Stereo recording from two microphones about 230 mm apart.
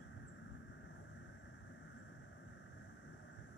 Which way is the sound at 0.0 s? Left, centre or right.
Left.